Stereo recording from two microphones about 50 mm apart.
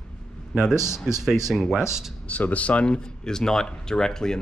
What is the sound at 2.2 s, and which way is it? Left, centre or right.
Speech, left.